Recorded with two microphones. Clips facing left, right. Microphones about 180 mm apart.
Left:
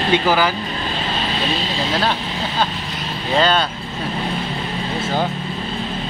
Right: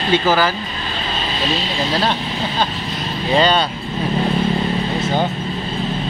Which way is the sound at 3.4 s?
Centre (ahead or behind).